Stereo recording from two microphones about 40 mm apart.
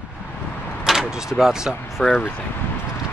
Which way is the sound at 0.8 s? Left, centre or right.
Centre.